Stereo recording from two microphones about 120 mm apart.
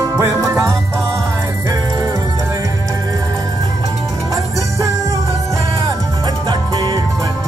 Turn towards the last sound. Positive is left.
turn(degrees=-40)  # may be behind; listen again after turning